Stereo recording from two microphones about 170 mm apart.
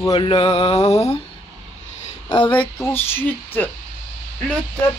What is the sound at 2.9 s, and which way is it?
Speech, 15° left (ahead or behind).